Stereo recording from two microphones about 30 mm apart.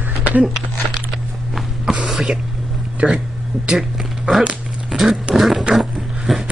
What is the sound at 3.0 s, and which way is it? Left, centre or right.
Speech, right.